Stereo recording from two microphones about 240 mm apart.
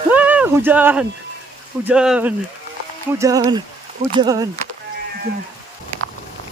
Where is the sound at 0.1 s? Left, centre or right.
Centre.